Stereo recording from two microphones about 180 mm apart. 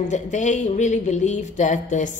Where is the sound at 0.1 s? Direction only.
40° left (ahead or behind).